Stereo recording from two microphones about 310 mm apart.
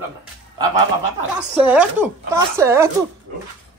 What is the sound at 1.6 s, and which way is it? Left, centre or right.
Speech, centre.